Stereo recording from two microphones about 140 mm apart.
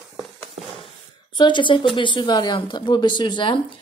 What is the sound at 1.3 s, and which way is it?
Speech, 35° left (ahead or behind).